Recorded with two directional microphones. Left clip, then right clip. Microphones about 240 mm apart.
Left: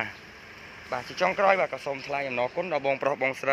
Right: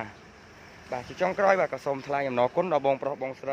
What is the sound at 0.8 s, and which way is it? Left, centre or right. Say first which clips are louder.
Speech: left 2 dB; centre.